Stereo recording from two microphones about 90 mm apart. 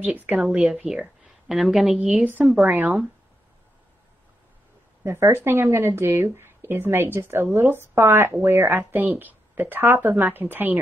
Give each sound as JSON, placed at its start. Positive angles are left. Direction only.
{"t": 0.0, "sound": "a woman's voice", "side_deg": -15}
{"t": 0.4, "sound": "a woman's voice", "side_deg": -5}
{"t": 2.0, "sound": "a woman's voice", "side_deg": -15}
{"t": 2.4, "sound": "a woman's voice", "side_deg": 0}
{"t": 2.7, "sound": "speech", "side_deg": -20}
{"t": 5.0, "sound": "speech", "side_deg": -30}